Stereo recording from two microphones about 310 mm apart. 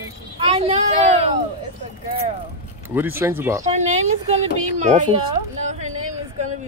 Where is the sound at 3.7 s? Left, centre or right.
Right.